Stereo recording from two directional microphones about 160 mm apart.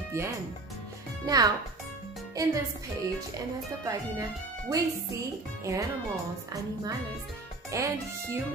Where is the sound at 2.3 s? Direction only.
20° right (ahead or behind).